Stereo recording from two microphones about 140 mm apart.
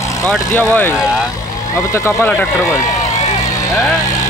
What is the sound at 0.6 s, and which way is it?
Speech, 15° left (ahead or behind).